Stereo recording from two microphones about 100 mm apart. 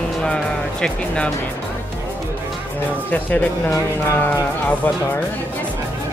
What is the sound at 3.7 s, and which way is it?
Speech, 25° left (ahead or behind).